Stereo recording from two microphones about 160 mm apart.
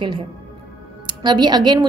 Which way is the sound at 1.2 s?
25° right (ahead or behind).